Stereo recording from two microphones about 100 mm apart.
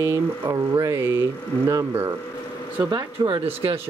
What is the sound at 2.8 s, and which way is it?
Speech, 50° right (ahead or behind).